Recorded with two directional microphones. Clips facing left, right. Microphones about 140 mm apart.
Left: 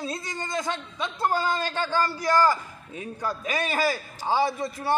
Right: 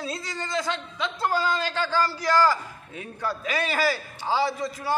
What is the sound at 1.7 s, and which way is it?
A man's voice, 20° left (ahead or behind).